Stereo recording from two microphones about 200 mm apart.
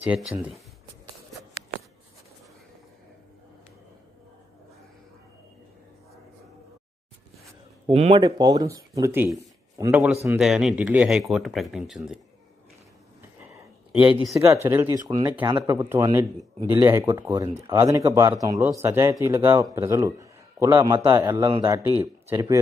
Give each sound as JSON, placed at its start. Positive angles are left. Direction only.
{"t": 0.1, "sound": "speech", "side_deg": 0}
{"t": 7.9, "sound": "speech", "side_deg": -30}
{"t": 14.3, "sound": "speech", "side_deg": -10}